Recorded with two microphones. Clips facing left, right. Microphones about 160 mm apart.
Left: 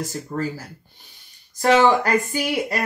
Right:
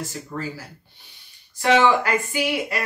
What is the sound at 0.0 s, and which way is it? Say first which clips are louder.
Speech: left 4 dB; 40° left (ahead or behind).